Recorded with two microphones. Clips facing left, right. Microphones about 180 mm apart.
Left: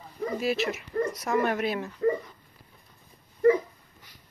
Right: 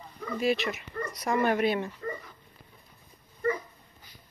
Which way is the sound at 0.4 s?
Centre (ahead or behind).